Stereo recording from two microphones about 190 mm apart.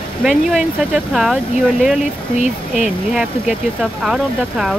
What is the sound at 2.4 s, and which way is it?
Speech, 40° left (ahead or behind).